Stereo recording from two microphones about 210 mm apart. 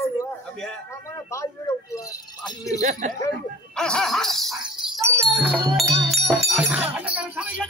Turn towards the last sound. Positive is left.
turn(degrees=-5)  # may be behind; listen again after turning